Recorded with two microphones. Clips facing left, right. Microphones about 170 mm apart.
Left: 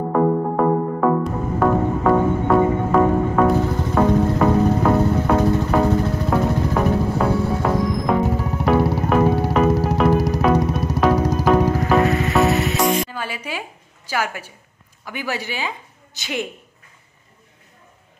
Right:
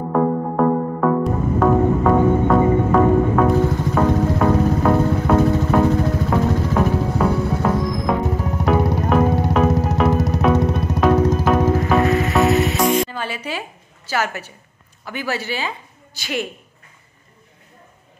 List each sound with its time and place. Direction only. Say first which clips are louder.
0.1 s music: even; centre (ahead or behind)
15.0 s a woman's voice: right 2 dB; 15° left (ahead or behind)